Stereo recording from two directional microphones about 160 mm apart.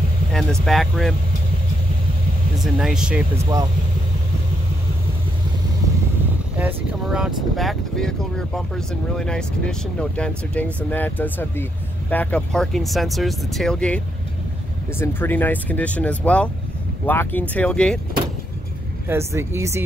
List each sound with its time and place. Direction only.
0.3 s speech: 5° left (ahead or behind)
2.6 s speech: centre (ahead or behind)
6.6 s speech: 5° right (ahead or behind)
19.0 s speech: 15° right (ahead or behind)